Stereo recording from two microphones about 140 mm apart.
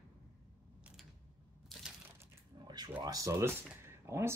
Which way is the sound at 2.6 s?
30° right (ahead or behind).